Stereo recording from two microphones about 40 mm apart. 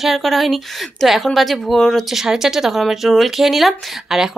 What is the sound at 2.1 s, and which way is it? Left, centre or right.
Speech, centre.